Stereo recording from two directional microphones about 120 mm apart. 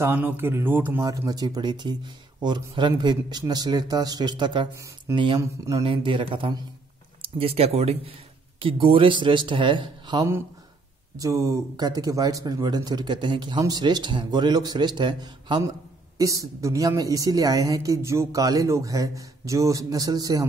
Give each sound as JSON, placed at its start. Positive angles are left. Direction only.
{"t": 0.0, "sound": "a man's voice", "side_deg": -15}
{"t": 1.0, "sound": "speech", "side_deg": -30}
{"t": 5.4, "sound": "a woman's voice", "side_deg": -25}
{"t": 5.8, "sound": "a man's voice", "side_deg": -45}
{"t": 8.5, "sound": "a man's voice", "side_deg": -45}
{"t": 11.1, "sound": "speech", "side_deg": -25}
{"t": 16.2, "sound": "a woman's voice", "side_deg": -25}